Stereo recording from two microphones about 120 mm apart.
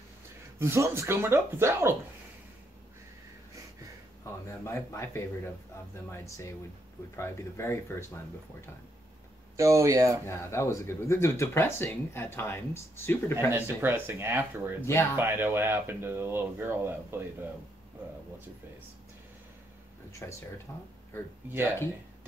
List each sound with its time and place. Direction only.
0.6 s speech: 20° right (ahead or behind)
4.2 s speech: 20° left (ahead or behind)
9.6 s speech: 25° right (ahead or behind)
10.2 s speech: 20° left (ahead or behind)
13.5 s speech: 20° right (ahead or behind)
20.1 s speech: 25° left (ahead or behind)